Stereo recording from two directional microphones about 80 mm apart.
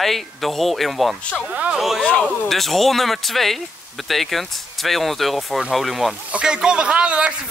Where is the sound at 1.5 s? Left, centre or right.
Centre.